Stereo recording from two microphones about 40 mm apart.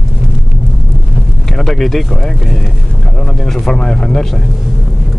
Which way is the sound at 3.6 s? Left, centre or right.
Centre.